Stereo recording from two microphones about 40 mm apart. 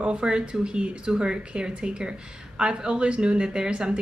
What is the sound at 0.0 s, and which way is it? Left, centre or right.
Speech, right.